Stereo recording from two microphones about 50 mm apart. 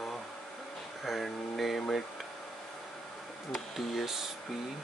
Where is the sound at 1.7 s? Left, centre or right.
Centre.